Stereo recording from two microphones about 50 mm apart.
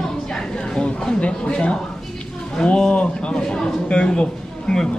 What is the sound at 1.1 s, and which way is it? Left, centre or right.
A man's voice, left.